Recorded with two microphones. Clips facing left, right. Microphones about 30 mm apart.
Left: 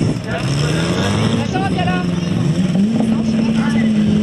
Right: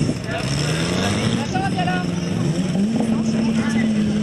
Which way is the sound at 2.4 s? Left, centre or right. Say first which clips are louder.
Left 5 dB; left.